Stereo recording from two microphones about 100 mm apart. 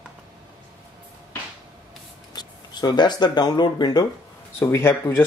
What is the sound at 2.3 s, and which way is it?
Speech, 45° left (ahead or behind).